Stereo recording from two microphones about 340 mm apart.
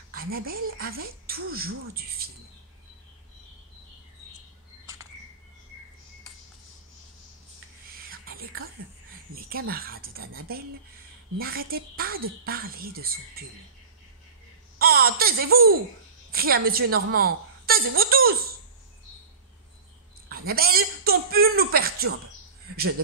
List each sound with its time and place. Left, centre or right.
0.1 s a woman's voice: right
8.1 s whispering: right
9.5 s a woman's voice: right
14.8 s baby laughter: right
16.3 s a woman's voice: right
20.2 s a woman's voice: right